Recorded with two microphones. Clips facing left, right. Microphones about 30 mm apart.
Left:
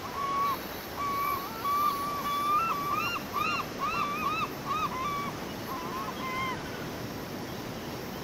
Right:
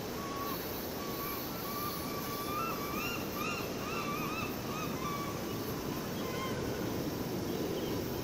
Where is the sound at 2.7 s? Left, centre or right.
Left.